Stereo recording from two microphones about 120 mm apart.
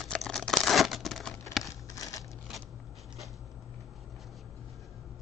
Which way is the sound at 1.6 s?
30° left (ahead or behind).